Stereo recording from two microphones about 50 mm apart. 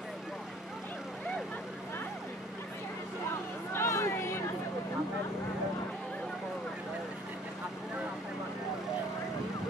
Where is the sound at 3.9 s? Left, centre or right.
Left.